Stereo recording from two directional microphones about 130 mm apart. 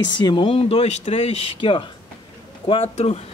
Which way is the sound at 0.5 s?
50° left (ahead or behind).